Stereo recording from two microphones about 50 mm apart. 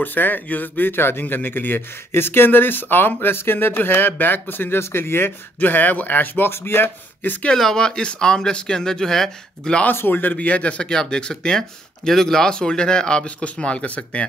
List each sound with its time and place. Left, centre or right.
0.0 s speech: left
5.6 s speech: left
7.5 s speech: centre
9.9 s speech: left